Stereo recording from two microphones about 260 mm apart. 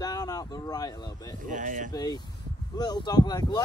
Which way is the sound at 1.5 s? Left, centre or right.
Right.